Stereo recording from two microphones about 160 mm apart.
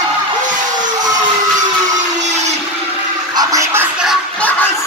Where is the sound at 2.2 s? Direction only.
45° right (ahead or behind).